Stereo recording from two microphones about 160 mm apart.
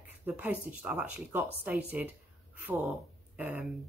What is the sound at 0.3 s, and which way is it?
A woman's voice, 10° right (ahead or behind).